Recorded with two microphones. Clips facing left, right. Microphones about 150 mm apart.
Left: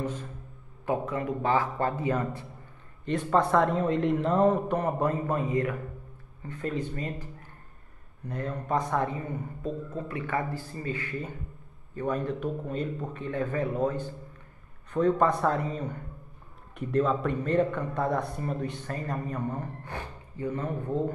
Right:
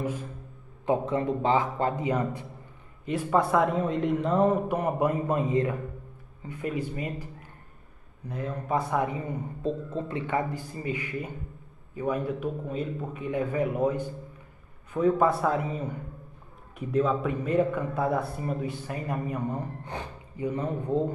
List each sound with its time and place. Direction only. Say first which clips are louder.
0.8 s a man's voice: right 3 dB; 25° right (ahead or behind)
6.4 s a man's voice: right 1 dB; 10° right (ahead or behind)
8.3 s a man's voice: even; 5° right (ahead or behind)
9.6 s a man's voice: right 5 dB; 25° right (ahead or behind)